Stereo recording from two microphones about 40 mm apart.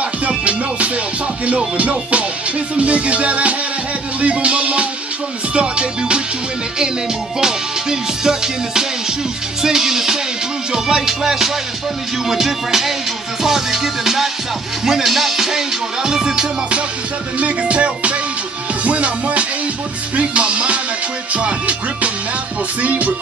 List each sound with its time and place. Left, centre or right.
0.2 s music: right
7.3 s music: centre
17.4 s music: right